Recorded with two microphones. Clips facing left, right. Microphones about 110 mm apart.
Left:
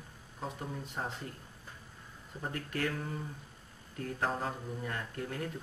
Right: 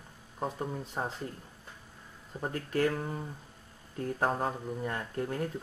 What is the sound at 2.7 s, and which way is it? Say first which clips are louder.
Speech: right 7 dB; 30° right (ahead or behind).